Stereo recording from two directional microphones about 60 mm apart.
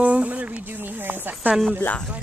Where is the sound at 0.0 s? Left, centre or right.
Right.